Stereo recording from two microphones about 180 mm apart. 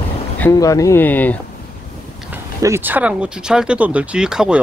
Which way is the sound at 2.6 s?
15° right (ahead or behind).